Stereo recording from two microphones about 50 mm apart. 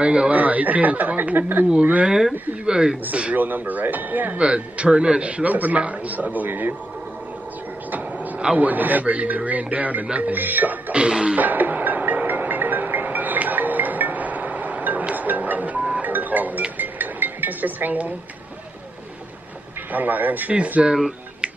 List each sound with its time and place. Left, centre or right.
0.0 s a man's voice: right
2.0 s speech: centre
3.1 s speech: right
4.4 s a man's voice: right
7.9 s vehicle: right
8.5 s speech: right
10.9 s a man's voice: centre
11.3 s music: right
19.9 s a man's voice: right